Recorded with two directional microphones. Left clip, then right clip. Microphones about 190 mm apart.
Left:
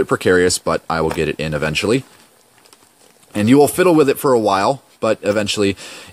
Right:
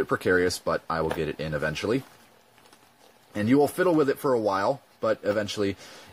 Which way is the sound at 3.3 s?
40° left (ahead or behind).